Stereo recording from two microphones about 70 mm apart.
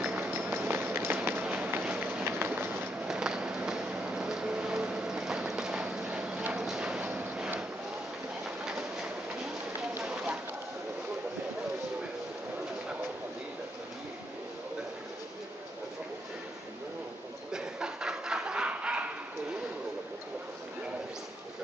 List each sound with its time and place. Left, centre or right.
0.4 s run: right
1.4 s run: centre
3.1 s vehicle: centre
6.5 s clip-clop: centre
8.6 s train: centre
10.0 s a sound: centre
17.5 s a sound: centre